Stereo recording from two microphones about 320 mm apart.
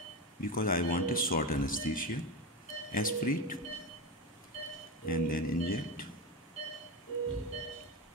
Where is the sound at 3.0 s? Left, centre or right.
Left.